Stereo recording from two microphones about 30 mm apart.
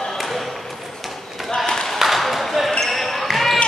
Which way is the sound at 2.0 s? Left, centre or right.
Centre.